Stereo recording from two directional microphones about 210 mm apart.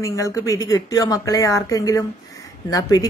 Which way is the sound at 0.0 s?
15° left (ahead or behind).